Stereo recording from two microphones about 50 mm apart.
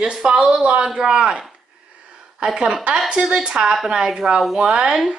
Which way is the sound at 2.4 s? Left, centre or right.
Centre.